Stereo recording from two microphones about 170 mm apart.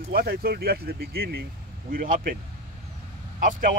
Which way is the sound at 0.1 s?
65° right (ahead or behind).